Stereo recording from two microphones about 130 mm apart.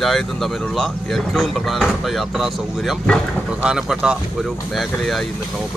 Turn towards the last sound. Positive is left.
turn(degrees=-5)  # may be behind; listen again after turning